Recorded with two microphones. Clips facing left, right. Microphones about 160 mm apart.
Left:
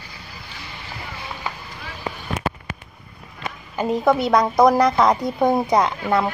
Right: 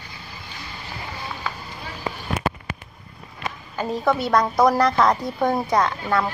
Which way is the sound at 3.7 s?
15° left (ahead or behind).